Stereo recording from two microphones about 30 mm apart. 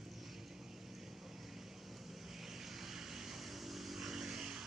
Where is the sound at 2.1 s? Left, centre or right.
Centre.